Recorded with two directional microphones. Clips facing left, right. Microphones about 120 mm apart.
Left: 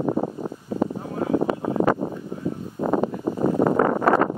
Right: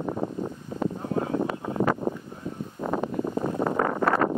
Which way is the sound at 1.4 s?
30° left (ahead or behind).